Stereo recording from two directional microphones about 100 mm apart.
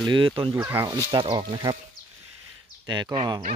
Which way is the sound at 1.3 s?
45° right (ahead or behind).